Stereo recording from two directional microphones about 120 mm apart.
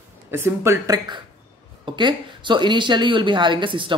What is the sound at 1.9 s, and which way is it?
Speech, 40° right (ahead or behind).